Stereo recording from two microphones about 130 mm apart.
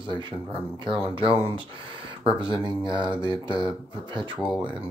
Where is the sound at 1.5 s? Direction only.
40° right (ahead or behind).